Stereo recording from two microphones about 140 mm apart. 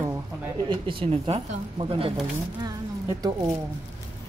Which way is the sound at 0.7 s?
40° right (ahead or behind).